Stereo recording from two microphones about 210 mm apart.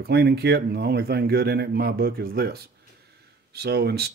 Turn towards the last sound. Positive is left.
turn(degrees=-50)  # may be behind; listen again after turning